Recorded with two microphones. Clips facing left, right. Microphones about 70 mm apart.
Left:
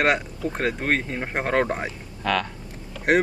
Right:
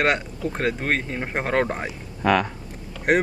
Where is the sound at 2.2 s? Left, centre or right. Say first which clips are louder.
Right 4 dB; centre.